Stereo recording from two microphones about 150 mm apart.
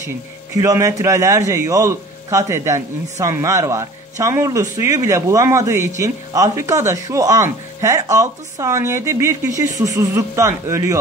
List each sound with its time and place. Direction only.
0.6 s a man's voice: 20° right (ahead or behind)